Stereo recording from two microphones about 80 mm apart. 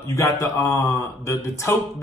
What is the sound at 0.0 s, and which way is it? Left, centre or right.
Speech, left.